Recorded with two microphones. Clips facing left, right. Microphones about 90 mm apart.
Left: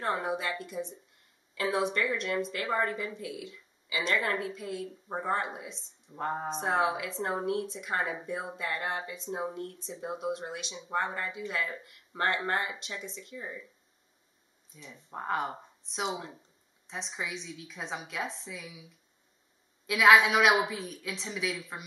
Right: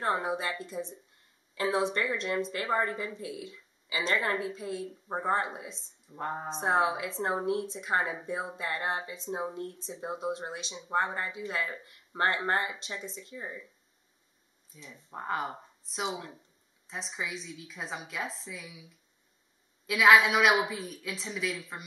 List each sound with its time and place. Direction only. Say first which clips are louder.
0.0 s a woman's voice: right 1 dB; 20° right (ahead or behind)
6.1 s a woman's voice: left 2 dB; centre (ahead or behind)
6.6 s speech: right 2 dB; 25° right (ahead or behind)
13.4 s speech: even; 15° right (ahead or behind)
14.7 s a woman's voice: left 1 dB; centre (ahead or behind)
19.9 s a woman's voice: even; centre (ahead or behind)